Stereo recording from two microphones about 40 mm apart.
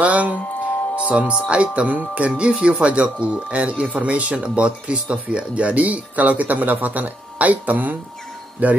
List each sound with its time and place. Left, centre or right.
0.0 s speech: right
5.6 s speech: right